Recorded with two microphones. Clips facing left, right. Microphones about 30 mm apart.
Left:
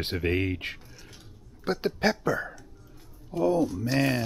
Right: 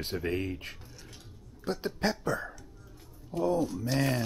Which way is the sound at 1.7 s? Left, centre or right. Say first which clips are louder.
Left 5 dB; left.